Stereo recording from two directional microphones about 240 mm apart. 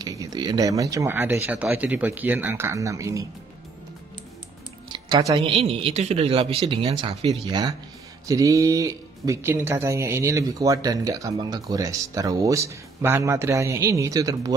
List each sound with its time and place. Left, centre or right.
0.0 s speech: centre
4.9 s speech: centre